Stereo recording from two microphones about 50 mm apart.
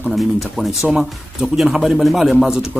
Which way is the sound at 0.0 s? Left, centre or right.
Centre.